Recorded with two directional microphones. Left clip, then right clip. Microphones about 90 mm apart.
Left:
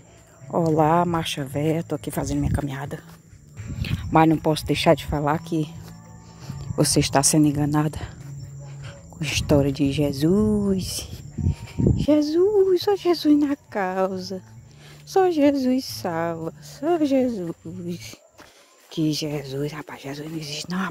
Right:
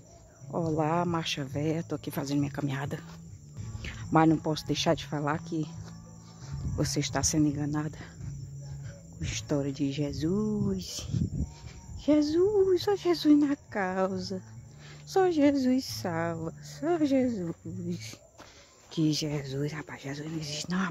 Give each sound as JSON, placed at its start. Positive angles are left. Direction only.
{"t": 0.7, "sound": "speech", "side_deg": 35}
{"t": 1.1, "sound": "speech", "side_deg": 20}
{"t": 2.6, "sound": "speech", "side_deg": 0}
{"t": 3.8, "sound": "a sound", "side_deg": -5}
{"t": 4.3, "sound": "speech", "side_deg": 15}
{"t": 5.4, "sound": "a sound", "side_deg": 20}
{"t": 6.8, "sound": "speech", "side_deg": 50}
{"t": 9.2, "sound": "speech", "side_deg": 50}
{"t": 10.3, "sound": "a sound", "side_deg": 20}
{"t": 12.0, "sound": "speech", "side_deg": 35}
{"t": 18.9, "sound": "a sound", "side_deg": 30}
{"t": 19.3, "sound": "speech", "side_deg": 40}